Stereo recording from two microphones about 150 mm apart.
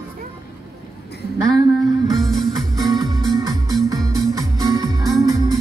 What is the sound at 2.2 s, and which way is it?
Music, centre (ahead or behind).